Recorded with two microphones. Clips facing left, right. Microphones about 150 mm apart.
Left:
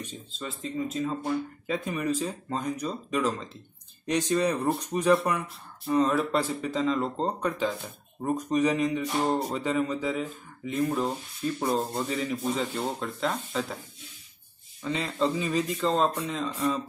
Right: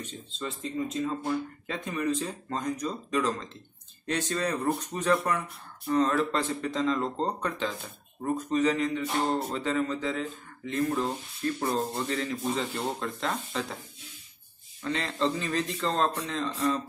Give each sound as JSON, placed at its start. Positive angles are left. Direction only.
{"t": 0.0, "sound": "speech", "side_deg": 10}
{"t": 11.6, "sound": "a sound", "side_deg": 20}
{"t": 12.0, "sound": "speech", "side_deg": 5}
{"t": 14.8, "sound": "speech", "side_deg": 5}